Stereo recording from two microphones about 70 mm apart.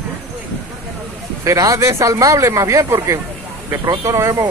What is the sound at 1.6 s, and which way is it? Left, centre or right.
Speech, right.